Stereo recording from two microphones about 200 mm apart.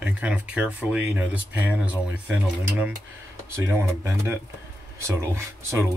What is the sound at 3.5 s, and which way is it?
Speech, 10° right (ahead or behind).